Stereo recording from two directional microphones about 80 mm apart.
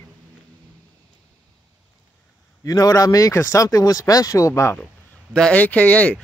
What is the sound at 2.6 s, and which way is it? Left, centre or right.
A man's voice, left.